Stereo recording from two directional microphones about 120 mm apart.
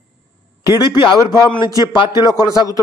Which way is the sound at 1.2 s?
25° left (ahead or behind).